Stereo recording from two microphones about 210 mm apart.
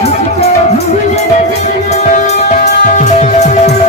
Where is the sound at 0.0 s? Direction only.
30° left (ahead or behind).